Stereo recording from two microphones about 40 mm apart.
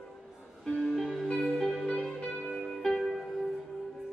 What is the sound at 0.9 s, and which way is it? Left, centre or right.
Music, centre.